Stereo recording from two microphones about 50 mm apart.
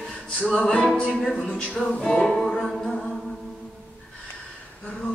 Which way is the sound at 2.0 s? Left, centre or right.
Centre.